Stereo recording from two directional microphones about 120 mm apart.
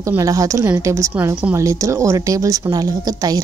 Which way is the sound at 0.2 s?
30° right (ahead or behind).